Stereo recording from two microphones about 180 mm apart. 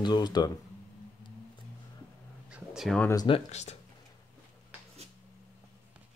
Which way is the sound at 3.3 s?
40° left (ahead or behind).